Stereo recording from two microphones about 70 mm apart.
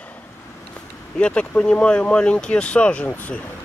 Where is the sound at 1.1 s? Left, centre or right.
Centre.